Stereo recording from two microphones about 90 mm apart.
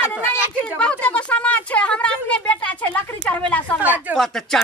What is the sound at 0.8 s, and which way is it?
Speech, 15° left (ahead or behind).